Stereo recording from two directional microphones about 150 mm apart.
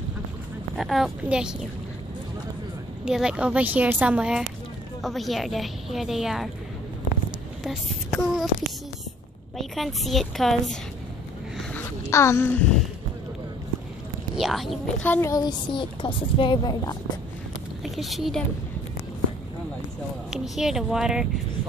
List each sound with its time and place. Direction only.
0.7 s a woman's voice: centre (ahead or behind)
3.1 s a woman's voice: 5° right (ahead or behind)
8.1 s child singing: 5° left (ahead or behind)
9.6 s a woman's voice: centre (ahead or behind)
11.7 s a sound: 20° left (ahead or behind)
14.3 s a woman's voice: centre (ahead or behind)
15.0 s a woman's voice: 15° left (ahead or behind)
17.9 s a woman's voice: centre (ahead or behind)
20.2 s a woman's voice: centre (ahead or behind)